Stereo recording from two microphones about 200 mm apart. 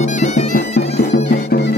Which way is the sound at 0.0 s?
35° left (ahead or behind).